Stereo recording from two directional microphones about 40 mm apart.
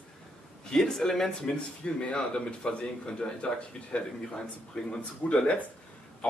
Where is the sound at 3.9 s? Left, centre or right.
Left.